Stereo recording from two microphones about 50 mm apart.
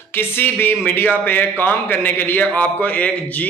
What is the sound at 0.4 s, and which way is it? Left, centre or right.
A man's voice, left.